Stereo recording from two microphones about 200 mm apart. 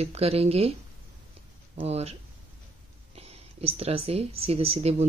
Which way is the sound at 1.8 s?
30° right (ahead or behind).